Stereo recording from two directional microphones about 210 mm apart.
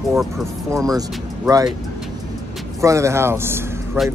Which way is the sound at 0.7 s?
15° right (ahead or behind).